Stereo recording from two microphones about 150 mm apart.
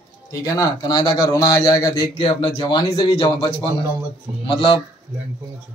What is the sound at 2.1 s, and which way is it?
Speech, 30° left (ahead or behind).